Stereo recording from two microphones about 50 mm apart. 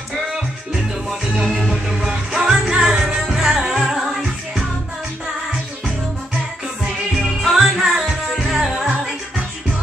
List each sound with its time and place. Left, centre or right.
1.4 s music: centre
7.2 s music: centre